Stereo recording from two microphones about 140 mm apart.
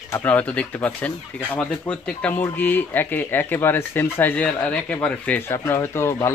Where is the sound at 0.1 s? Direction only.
15° left (ahead or behind).